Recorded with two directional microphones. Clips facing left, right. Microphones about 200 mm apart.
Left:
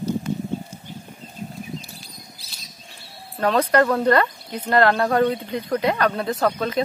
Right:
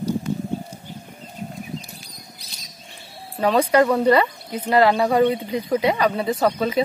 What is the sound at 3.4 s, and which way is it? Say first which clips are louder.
A woman's voice: right 1 dB; 5° right (ahead or behind).